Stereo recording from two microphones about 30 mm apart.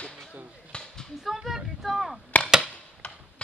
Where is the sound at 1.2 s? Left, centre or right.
Centre.